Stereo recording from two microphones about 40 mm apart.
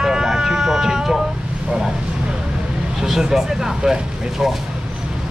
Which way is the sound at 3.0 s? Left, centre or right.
Centre.